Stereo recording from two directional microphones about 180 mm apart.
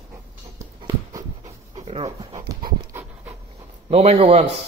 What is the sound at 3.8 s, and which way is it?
Speech, 35° right (ahead or behind).